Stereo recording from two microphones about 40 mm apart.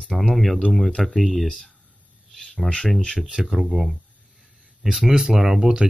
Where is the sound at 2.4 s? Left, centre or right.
Centre.